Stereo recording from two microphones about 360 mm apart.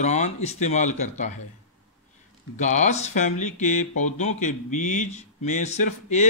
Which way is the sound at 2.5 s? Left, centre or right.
Centre.